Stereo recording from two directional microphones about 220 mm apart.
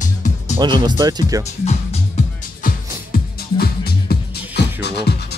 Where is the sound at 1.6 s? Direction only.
30° left (ahead or behind).